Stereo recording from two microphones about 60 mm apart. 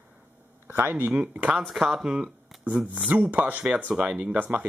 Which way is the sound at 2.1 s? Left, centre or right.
Centre.